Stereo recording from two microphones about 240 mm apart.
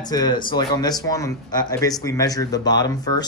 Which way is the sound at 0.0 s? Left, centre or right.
Centre.